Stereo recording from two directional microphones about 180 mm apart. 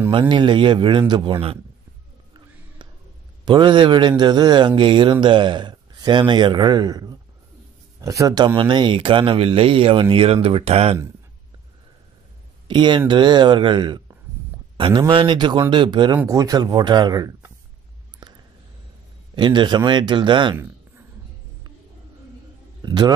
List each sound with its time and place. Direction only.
0.1 s speech: 25° right (ahead or behind)
3.4 s speech: 25° right (ahead or behind)
12.6 s speech: 25° right (ahead or behind)
18.2 s a sound: 25° right (ahead or behind)
19.3 s speech: 25° right (ahead or behind)
22.8 s a man's voice: 25° right (ahead or behind)